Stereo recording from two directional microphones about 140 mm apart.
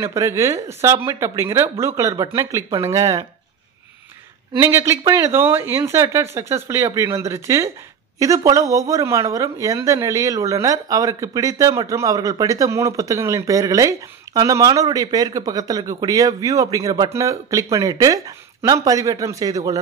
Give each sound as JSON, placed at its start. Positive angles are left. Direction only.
{"t": 0.0, "sound": "speech", "side_deg": -20}
{"t": 4.6, "sound": "speech", "side_deg": -20}